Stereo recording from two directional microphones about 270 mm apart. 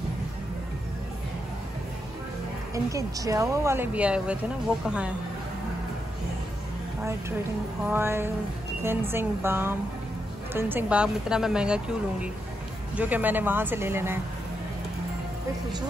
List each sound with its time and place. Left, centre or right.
2.7 s a woman's voice: centre
7.9 s a woman's voice: centre